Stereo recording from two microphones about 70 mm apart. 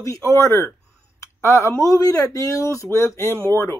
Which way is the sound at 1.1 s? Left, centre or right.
Left.